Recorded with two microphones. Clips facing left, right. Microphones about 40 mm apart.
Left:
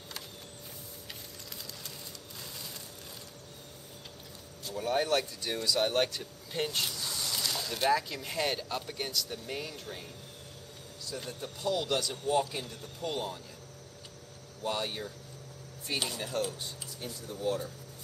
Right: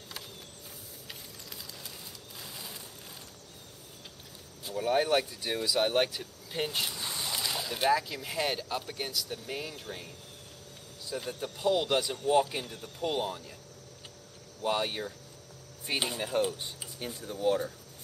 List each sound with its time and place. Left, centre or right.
2.4 s a sound: centre
4.7 s speech: centre
7.0 s speech: right; by 10.0 s centre
11.1 s a man's voice: centre
14.6 s a man's voice: right